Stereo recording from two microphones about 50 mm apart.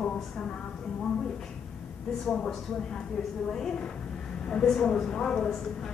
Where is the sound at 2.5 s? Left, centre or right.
Centre.